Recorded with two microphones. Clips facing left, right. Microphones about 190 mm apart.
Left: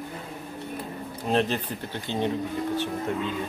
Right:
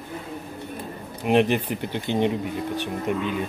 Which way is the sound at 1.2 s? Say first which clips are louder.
Right 5 dB; 15° right (ahead or behind).